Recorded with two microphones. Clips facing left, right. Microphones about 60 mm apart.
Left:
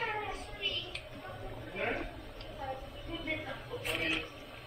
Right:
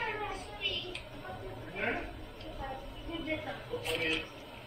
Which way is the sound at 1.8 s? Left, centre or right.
Centre.